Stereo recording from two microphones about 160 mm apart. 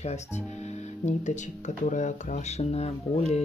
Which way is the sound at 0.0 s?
45° left (ahead or behind).